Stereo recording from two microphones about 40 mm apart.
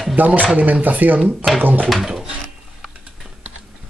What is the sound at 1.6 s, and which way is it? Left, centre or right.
Speech, right.